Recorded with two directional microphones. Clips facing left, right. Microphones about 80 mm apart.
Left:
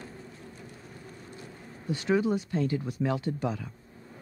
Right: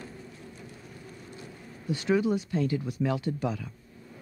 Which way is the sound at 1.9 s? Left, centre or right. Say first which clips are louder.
Right 1 dB; left.